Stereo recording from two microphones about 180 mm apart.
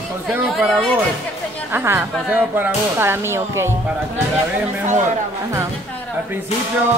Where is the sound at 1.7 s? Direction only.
15° right (ahead or behind).